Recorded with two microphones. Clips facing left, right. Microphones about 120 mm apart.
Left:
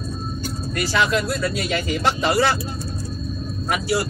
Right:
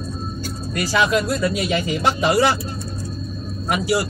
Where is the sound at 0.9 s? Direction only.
15° right (ahead or behind).